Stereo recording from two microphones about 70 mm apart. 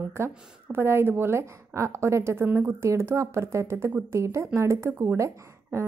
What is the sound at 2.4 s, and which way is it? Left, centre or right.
Speech, right.